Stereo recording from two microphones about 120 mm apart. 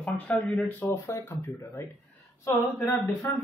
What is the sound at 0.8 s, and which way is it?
Speech, 25° left (ahead or behind).